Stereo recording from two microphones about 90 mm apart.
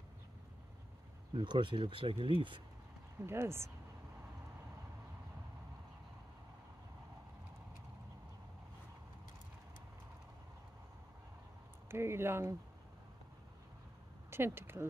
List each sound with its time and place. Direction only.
1.3 s speech: 60° right (ahead or behind)
3.3 s speech: 30° right (ahead or behind)
11.9 s speech: 30° right (ahead or behind)
14.3 s speech: 25° right (ahead or behind)